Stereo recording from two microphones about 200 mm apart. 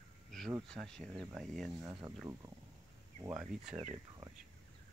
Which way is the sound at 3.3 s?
5° right (ahead or behind).